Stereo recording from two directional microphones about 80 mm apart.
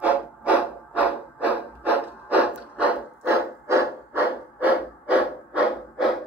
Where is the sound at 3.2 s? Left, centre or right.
Right; by 6.2 s centre.